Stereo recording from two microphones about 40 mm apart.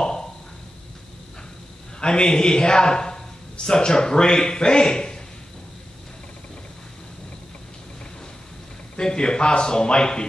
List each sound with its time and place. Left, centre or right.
0.0 s a sound: centre
2.0 s a man's voice: left
8.9 s a man's voice: left